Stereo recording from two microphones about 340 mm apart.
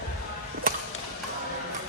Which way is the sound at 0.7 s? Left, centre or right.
Right.